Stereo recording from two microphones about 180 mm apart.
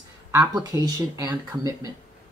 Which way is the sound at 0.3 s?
15° right (ahead or behind).